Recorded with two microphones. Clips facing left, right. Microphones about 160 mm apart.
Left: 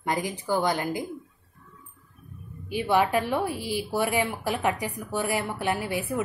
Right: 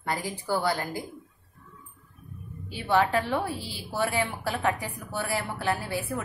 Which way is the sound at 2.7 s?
15° left (ahead or behind).